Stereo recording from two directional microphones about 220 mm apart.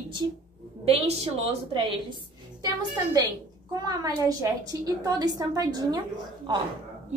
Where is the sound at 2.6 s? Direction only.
15° right (ahead or behind).